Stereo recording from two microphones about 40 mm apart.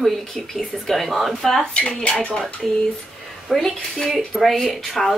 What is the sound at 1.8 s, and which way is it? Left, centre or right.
Speech, left.